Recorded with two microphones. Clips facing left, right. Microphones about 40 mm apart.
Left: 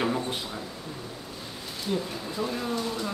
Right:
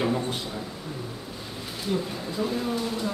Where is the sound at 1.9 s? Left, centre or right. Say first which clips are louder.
Right 1 dB; centre.